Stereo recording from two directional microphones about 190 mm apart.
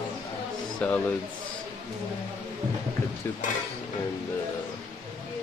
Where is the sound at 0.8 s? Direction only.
5° left (ahead or behind).